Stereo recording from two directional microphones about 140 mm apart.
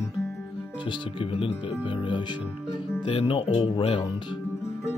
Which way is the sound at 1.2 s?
40° left (ahead or behind).